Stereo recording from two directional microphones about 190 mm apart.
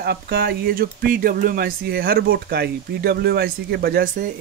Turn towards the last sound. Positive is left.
turn(degrees=-55)  # may be behind; listen again after turning